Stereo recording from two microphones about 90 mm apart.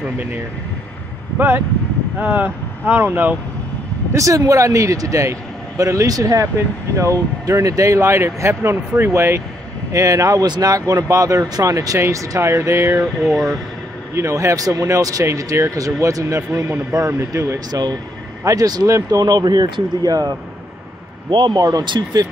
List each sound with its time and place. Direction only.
0.0 s speech: 20° right (ahead or behind)
2.1 s speech: 20° right (ahead or behind)
4.1 s speech: 40° right (ahead or behind)
13.2 s speech: 5° right (ahead or behind)
14.1 s speech: 30° right (ahead or behind)
21.3 s speech: 60° right (ahead or behind)
21.5 s speech: 40° right (ahead or behind)
21.8 s speech: 60° right (ahead or behind)